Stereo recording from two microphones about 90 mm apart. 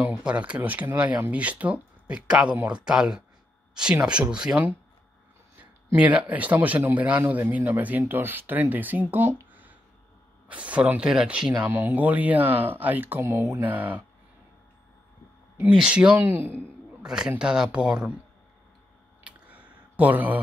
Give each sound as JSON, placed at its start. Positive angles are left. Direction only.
{"t": 0.0, "sound": "speech", "side_deg": -15}
{"t": 5.9, "sound": "speech", "side_deg": -15}
{"t": 9.5, "sound": "a sound", "side_deg": -20}
{"t": 10.5, "sound": "speech", "side_deg": -15}
{"t": 11.6, "sound": "speech", "side_deg": -20}
{"t": 15.5, "sound": "speech", "side_deg": -10}
{"t": 17.0, "sound": "a man's voice", "side_deg": -5}
{"t": 19.2, "sound": "a sound", "side_deg": -15}